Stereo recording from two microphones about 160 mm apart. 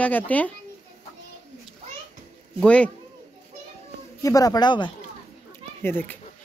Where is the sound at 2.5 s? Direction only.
5° left (ahead or behind).